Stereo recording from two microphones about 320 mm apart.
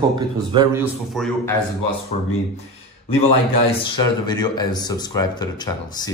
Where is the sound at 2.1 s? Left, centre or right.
Left.